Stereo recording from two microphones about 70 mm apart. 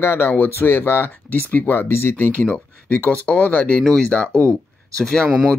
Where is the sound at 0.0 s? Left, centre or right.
Left.